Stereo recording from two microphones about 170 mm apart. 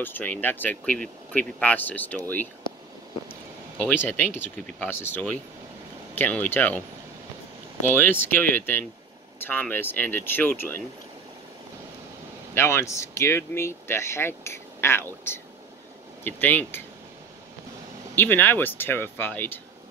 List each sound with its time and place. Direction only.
0.0 s speech: 10° left (ahead or behind)
3.3 s a sound: 10° left (ahead or behind)
4.4 s speech: 10° left (ahead or behind)
7.9 s speech: 10° left (ahead or behind)
12.5 s speech: 15° left (ahead or behind)
18.1 s speech: 10° left (ahead or behind)